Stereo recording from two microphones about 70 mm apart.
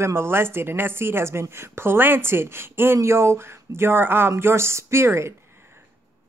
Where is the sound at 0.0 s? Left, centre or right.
Right.